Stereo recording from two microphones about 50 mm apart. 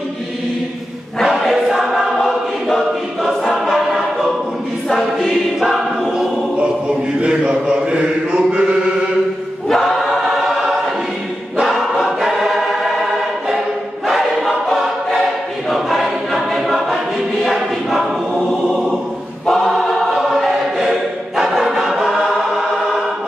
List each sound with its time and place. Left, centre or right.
1.2 s choir: centre
4.8 s choir: centre
5.6 s choir: centre
7.2 s chant: right
9.7 s choir: centre
14.0 s choir: centre
19.4 s choir: centre